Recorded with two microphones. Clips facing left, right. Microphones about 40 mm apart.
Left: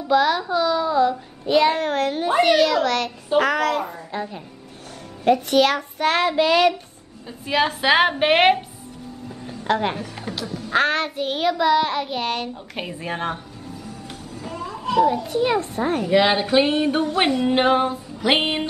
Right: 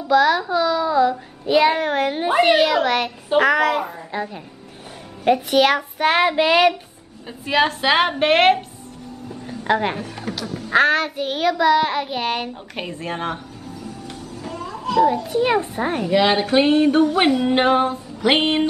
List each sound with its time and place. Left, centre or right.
0.1 s music: centre
1.1 s child singing: centre
5.5 s child singing: centre
7.4 s music: centre
9.5 s speech: centre
10.3 s music: centre
14.4 s a sound: centre
15.4 s child singing: centre
16.1 s music: centre